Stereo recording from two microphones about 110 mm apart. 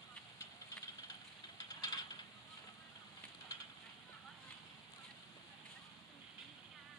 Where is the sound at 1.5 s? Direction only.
35° left (ahead or behind).